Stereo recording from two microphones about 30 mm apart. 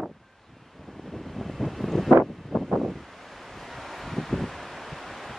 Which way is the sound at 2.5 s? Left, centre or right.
Centre.